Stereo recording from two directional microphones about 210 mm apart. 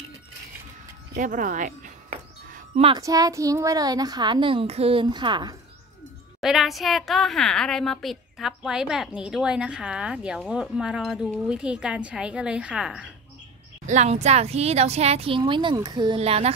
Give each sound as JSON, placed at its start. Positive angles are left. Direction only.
{"t": 1.1, "sound": "music", "side_deg": -40}
{"t": 3.0, "sound": "speech", "side_deg": -15}
{"t": 6.4, "sound": "a woman's voice", "side_deg": 0}
{"t": 13.8, "sound": "speech", "side_deg": -30}